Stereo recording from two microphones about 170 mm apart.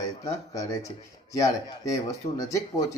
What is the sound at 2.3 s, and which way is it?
Speech, 20° left (ahead or behind).